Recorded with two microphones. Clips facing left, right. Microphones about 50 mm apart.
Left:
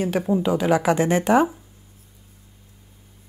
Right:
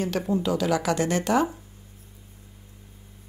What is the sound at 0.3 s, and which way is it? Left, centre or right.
Speech, left.